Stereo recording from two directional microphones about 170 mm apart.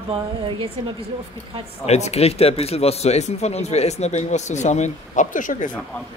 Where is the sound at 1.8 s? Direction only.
40° left (ahead or behind).